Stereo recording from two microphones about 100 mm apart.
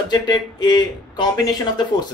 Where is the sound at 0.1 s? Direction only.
45° left (ahead or behind).